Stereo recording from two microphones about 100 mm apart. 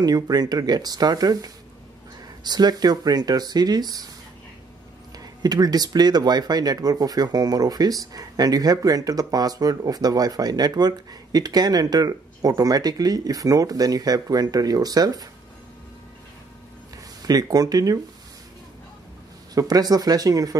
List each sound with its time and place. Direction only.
0.0 s speech: 40° right (ahead or behind)
5.2 s speech: 40° right (ahead or behind)
17.2 s speech: 40° right (ahead or behind)
19.5 s speech: 40° right (ahead or behind)